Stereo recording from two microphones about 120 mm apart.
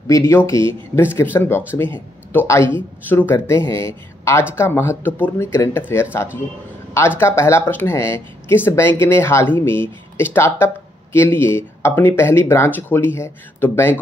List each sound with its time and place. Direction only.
0.1 s speech: 20° left (ahead or behind)